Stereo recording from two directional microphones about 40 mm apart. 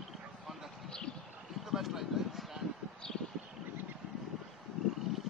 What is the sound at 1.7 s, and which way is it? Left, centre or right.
Speech, centre.